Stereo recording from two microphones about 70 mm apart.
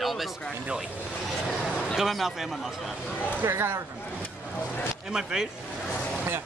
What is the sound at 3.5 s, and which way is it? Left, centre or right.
Speech, right.